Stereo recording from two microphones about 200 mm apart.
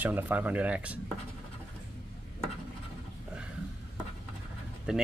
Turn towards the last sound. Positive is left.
turn(degrees=-5)  # may be behind; listen again after turning